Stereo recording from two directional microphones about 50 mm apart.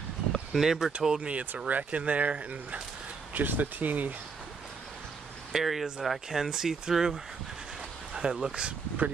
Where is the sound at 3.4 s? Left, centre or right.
Right.